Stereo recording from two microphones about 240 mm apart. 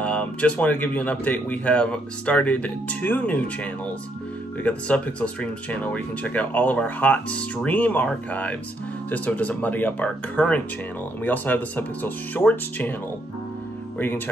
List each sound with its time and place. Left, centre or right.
0.0 s speech: centre
13.9 s speech: centre